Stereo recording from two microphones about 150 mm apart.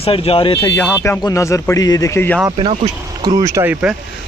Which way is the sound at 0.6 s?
15° left (ahead or behind).